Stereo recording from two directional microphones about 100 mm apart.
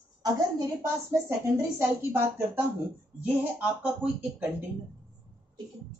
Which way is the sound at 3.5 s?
10° right (ahead or behind).